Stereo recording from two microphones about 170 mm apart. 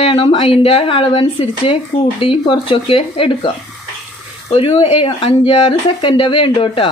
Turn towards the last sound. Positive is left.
turn(degrees=30)  # may be behind; listen again after turning